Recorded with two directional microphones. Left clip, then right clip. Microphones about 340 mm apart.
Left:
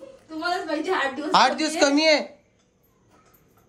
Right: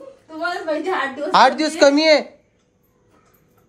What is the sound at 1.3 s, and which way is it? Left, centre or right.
Speech, centre.